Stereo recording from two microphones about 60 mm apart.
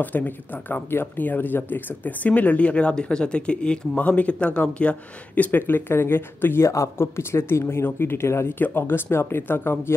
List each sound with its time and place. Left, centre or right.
0.0 s speech: left
6.7 s speech: left